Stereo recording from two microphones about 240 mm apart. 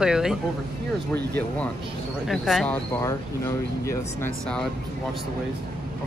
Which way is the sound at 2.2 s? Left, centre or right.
Centre.